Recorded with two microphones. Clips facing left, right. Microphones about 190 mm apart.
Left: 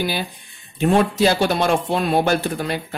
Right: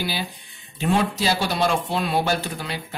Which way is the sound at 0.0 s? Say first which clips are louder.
Left 4 dB; 50° left (ahead or behind).